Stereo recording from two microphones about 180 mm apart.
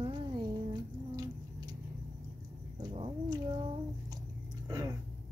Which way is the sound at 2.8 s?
25° right (ahead or behind).